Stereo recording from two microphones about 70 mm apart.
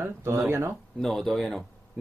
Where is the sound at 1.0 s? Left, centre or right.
Centre.